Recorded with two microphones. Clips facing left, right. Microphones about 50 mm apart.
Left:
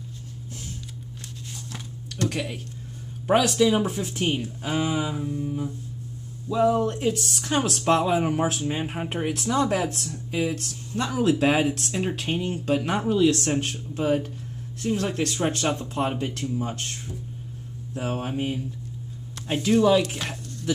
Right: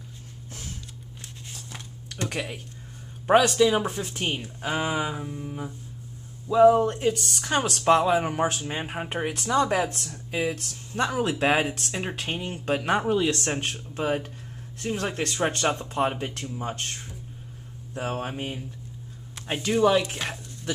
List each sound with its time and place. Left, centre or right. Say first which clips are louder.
2.0 s speech: left 3 dB; centre
4.4 s speech: left 2 dB; centre
6.9 s speech: even; centre
10.9 s speech: left 2 dB; centre
11.3 s speech: left 2 dB; centre
17.9 s speech: left 2 dB; centre
19.3 s a sound: left 3 dB; centre
19.6 s speech: left 2 dB; centre